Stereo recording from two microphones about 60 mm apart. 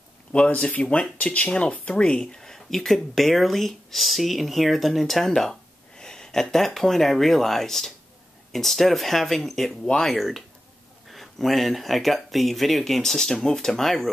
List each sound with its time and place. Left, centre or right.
0.3 s speech: centre